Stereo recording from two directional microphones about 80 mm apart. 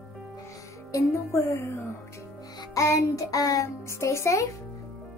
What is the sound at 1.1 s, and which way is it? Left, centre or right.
Speech, left.